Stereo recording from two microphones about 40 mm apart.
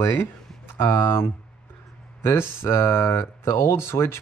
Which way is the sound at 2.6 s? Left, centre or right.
Left.